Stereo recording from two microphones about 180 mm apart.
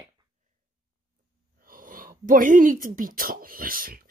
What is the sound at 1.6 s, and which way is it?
Speech, 50° right (ahead or behind).